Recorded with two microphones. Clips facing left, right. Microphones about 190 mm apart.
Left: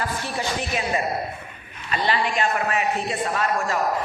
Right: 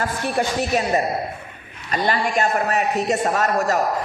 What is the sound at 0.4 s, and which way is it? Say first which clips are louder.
Speech: right 7 dB; 40° right (ahead or behind).